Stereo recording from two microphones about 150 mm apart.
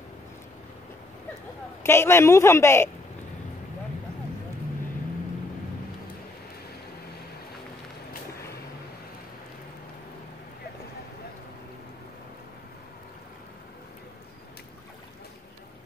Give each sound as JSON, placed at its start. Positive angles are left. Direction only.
{"t": 1.8, "sound": "a man's voice", "side_deg": 15}